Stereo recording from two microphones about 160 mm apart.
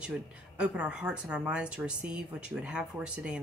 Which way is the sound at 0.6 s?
5° right (ahead or behind).